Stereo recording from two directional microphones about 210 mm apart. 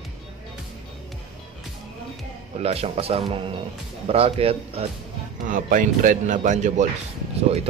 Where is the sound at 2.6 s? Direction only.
30° right (ahead or behind).